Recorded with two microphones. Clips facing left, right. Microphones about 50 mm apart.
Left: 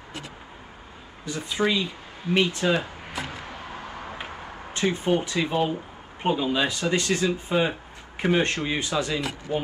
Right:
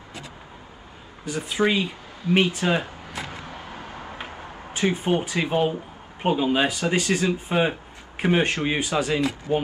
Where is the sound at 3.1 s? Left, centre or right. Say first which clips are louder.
Even; right.